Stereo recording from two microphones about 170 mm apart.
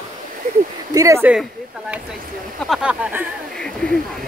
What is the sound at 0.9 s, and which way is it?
Speech, 15° right (ahead or behind).